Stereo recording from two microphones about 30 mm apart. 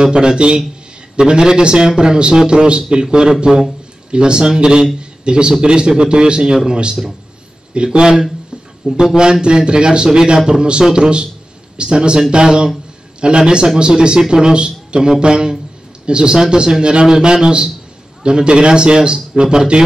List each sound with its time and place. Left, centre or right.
0.0 s a man's voice: right